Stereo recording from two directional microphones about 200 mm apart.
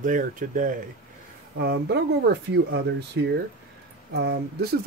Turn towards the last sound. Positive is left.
turn(degrees=-55)  # may be behind; listen again after turning